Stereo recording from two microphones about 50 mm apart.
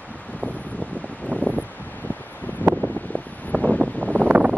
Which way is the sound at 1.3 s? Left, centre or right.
Left.